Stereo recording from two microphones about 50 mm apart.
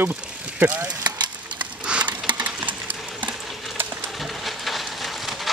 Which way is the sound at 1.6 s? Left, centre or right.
Right.